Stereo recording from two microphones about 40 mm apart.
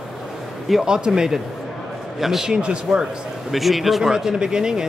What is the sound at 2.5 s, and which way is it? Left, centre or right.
Speech, right.